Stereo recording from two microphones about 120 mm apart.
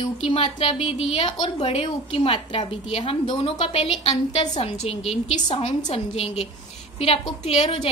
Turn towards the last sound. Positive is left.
turn(degrees=55)  # may be behind; listen again after turning